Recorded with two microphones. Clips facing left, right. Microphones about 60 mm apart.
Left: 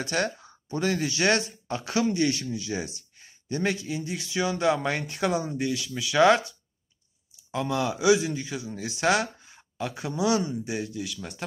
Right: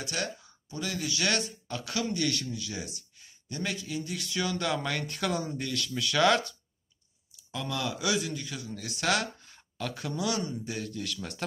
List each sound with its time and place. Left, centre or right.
0.0 s speech: left; by 6.4 s centre
7.5 s speech: left
11.0 s speech: centre